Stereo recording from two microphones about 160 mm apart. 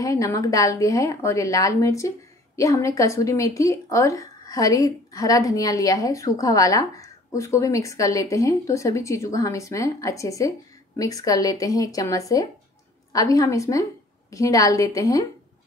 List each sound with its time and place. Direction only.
0.0 s a woman's voice: 20° left (ahead or behind)